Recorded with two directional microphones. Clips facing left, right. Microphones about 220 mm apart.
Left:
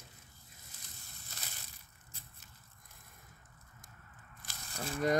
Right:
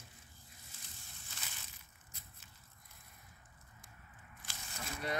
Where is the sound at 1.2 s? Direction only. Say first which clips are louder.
Left 2 dB; 40° left (ahead or behind).